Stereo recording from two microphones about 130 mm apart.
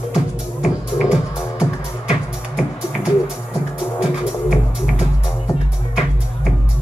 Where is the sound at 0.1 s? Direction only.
5° right (ahead or behind).